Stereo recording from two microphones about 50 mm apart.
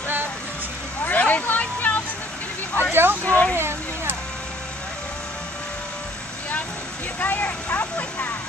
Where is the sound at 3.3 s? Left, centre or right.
Left.